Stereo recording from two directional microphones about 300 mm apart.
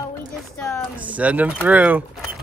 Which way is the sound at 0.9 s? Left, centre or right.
Centre.